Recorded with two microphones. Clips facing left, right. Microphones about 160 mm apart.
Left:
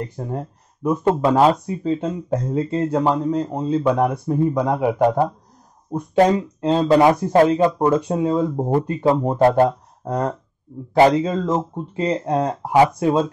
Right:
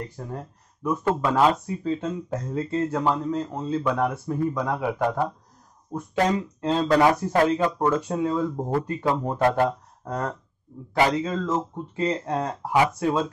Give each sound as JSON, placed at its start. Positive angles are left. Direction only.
{"t": 0.0, "sound": "speech", "side_deg": 20}
{"t": 4.9, "sound": "speech", "side_deg": 35}
{"t": 6.6, "sound": "speech", "side_deg": 20}